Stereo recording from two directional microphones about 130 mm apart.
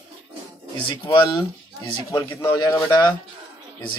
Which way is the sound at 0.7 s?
40° left (ahead or behind).